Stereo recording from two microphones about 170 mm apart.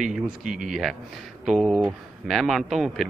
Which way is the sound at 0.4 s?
50° right (ahead or behind).